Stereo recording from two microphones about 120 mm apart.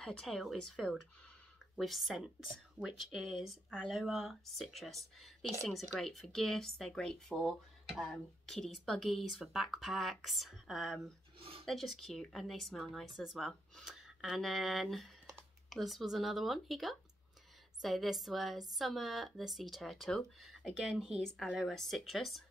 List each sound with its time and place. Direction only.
0.0 s speech: 5° left (ahead or behind)
11.3 s a sound: 50° right (ahead or behind)
11.6 s speech: centre (ahead or behind)